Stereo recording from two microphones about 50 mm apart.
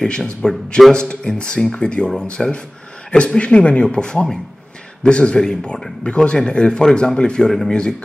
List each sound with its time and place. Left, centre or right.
0.4 s speech: centre